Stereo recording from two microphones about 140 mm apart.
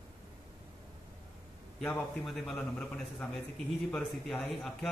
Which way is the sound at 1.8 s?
5° left (ahead or behind).